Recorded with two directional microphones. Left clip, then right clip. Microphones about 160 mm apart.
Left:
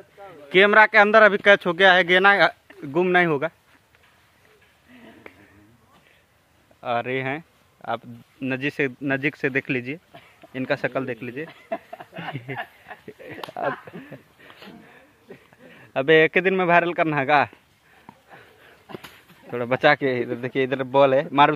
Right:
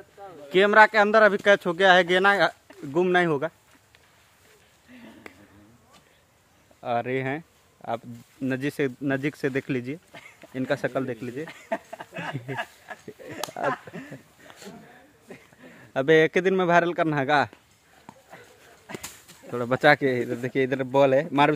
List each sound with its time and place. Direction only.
0.2 s a man's voice: 15° left (ahead or behind)
4.9 s a sound: 25° right (ahead or behind)
6.8 s speech: 20° right (ahead or behind)
11.4 s speech: 35° right (ahead or behind)
12.3 s speech: 15° right (ahead or behind); by 13.7 s 35° right (ahead or behind)
13.8 s a sound: 25° right (ahead or behind)
15.8 s a man's voice: 25° right (ahead or behind)
19.5 s a man's voice: 20° right (ahead or behind)